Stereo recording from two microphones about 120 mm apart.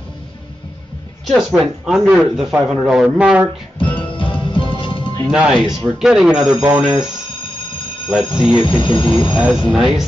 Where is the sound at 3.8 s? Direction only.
45° left (ahead or behind).